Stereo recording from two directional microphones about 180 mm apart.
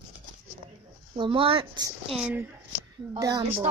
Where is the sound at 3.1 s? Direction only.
20° right (ahead or behind).